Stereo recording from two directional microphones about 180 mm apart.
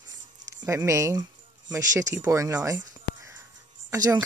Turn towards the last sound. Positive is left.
turn(degrees=-20)  # may be behind; listen again after turning